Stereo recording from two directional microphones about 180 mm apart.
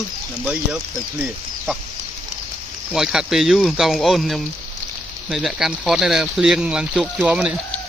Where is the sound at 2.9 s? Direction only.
5° right (ahead or behind).